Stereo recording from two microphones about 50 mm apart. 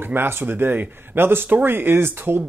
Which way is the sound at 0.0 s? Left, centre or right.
Right.